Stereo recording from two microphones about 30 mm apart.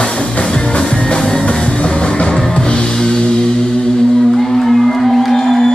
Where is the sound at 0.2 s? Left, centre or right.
Left.